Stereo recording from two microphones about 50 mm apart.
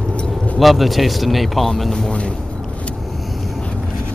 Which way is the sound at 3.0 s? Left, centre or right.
Centre.